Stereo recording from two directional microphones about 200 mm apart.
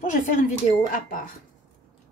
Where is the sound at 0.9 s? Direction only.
45° left (ahead or behind).